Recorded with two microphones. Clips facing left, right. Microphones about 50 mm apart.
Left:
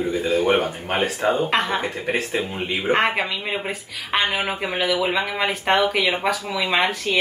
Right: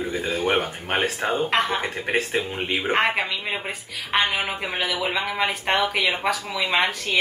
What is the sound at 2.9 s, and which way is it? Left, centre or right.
A woman's voice, centre.